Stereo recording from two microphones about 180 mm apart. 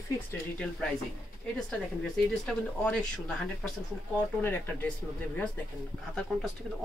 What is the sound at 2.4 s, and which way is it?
Speech, 5° left (ahead or behind).